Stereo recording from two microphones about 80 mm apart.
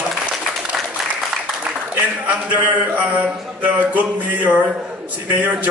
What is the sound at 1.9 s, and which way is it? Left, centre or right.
A man's voice, right.